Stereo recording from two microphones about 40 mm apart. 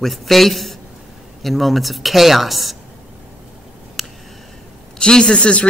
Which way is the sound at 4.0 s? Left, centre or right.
Centre.